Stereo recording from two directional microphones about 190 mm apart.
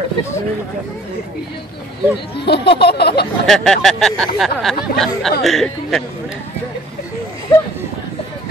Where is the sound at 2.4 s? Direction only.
60° left (ahead or behind).